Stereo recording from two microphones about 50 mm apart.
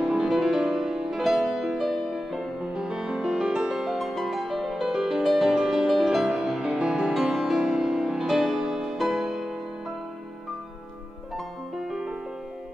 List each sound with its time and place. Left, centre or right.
0.0 s music: centre
11.8 s music: centre